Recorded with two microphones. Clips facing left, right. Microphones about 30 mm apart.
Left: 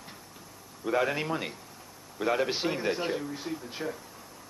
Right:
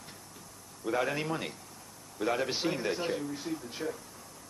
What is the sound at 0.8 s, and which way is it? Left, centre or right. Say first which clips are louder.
Speech: left 3 dB; centre.